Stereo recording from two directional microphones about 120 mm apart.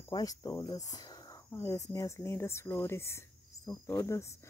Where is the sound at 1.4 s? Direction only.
20° left (ahead or behind).